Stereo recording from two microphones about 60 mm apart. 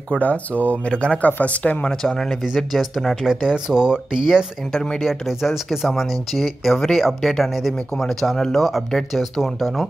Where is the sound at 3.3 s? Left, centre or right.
Centre.